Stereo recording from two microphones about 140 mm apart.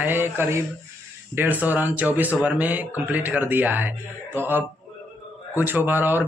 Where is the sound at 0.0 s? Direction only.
15° right (ahead or behind).